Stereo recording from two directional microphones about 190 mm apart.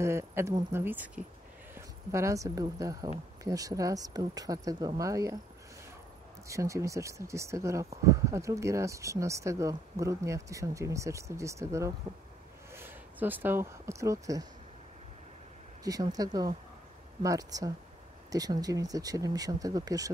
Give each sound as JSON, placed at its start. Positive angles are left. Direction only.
{"t": 0.0, "sound": "speech", "side_deg": -15}
{"t": 6.4, "sound": "speech", "side_deg": -15}
{"t": 15.8, "sound": "speech", "side_deg": -20}